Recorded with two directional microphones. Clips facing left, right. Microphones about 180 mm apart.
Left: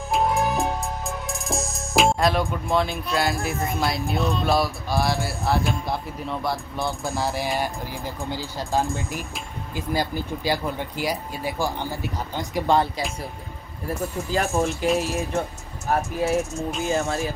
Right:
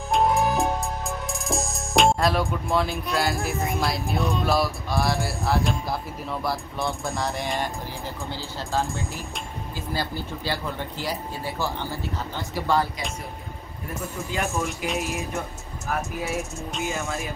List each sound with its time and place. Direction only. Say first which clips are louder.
0.1 s music: right 1 dB; centre (ahead or behind)
3.8 s speech: left 4 dB; centre (ahead or behind); by 12.8 s 20° left (ahead or behind)
14.3 s speech: left 5 dB; 35° left (ahead or behind)